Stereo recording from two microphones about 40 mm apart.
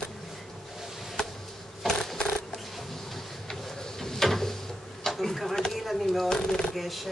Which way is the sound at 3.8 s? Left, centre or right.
Centre.